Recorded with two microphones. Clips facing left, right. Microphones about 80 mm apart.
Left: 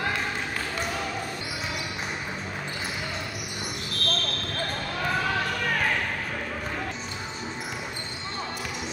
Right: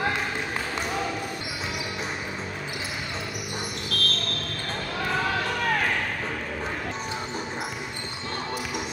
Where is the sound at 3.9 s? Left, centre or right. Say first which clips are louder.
Right 6 dB; left.